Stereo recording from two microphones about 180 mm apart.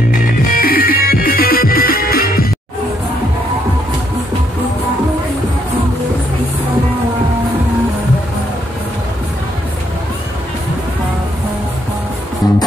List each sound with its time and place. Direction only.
0.1 s music: 50° left (ahead or behind)